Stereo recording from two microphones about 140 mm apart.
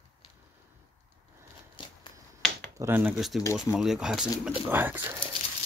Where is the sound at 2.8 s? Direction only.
15° right (ahead or behind).